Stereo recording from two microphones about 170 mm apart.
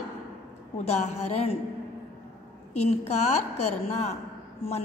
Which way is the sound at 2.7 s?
40° left (ahead or behind).